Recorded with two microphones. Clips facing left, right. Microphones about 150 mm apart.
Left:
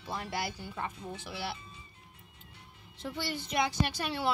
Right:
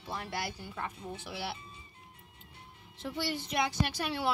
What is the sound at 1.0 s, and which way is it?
Speech, 10° right (ahead or behind).